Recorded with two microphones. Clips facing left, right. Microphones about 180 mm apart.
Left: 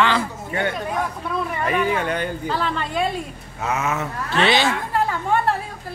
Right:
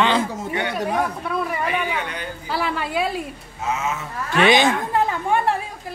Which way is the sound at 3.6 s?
65° left (ahead or behind).